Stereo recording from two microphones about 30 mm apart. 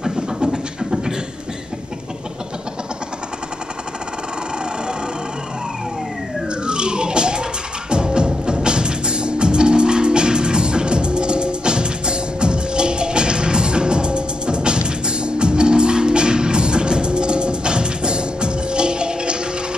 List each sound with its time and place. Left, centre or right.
0.0 s beatboxing: right
6.6 s a sound: right
7.9 s music: right